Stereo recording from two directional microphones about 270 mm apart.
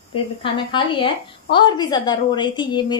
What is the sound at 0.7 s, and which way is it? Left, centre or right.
A woman's voice, centre.